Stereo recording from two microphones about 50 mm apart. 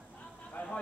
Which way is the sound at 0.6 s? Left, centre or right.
Left.